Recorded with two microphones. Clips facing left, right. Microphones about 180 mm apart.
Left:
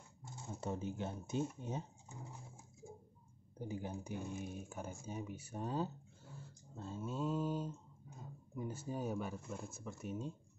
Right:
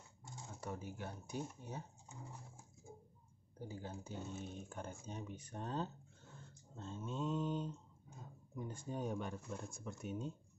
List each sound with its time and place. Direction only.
0.5 s speech: 25° left (ahead or behind)
3.5 s speech: 15° left (ahead or behind); by 10.3 s centre (ahead or behind)